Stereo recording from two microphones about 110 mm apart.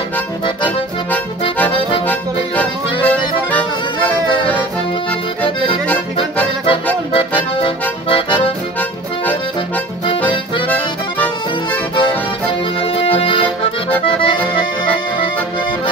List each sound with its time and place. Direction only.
3.1 s accordion: 15° left (ahead or behind)
7.1 s accordion: 50° left (ahead or behind)
10.2 s accordion: 15° left (ahead or behind)
13.2 s accordion: 55° left (ahead or behind)